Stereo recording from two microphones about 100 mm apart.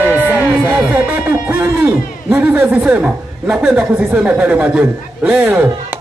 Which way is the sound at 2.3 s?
15° right (ahead or behind).